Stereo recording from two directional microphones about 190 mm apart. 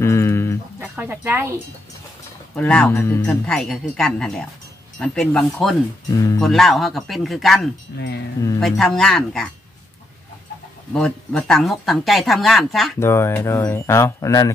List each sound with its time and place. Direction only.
0.0 s chicken: 15° left (ahead or behind)
0.7 s speech: 10° right (ahead or behind)
2.5 s speech: 5° left (ahead or behind)
6.1 s speech: 20° left (ahead or behind)
6.4 s speech: centre (ahead or behind)
11.0 s speech: 5° left (ahead or behind)
13.0 s speech: 15° left (ahead or behind)